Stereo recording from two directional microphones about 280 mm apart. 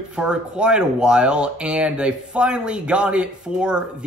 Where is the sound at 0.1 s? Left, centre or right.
Centre.